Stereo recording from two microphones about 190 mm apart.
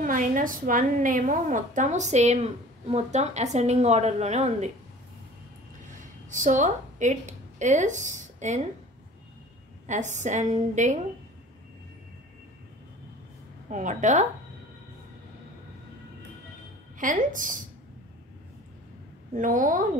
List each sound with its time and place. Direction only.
0.0 s a woman's voice: 45° right (ahead or behind)
6.3 s a woman's voice: 40° right (ahead or behind)
9.8 s a woman's voice: 40° right (ahead or behind)
13.7 s a woman's voice: 40° right (ahead or behind)
17.0 s a woman's voice: 45° right (ahead or behind)
19.3 s a woman's voice: 45° right (ahead or behind)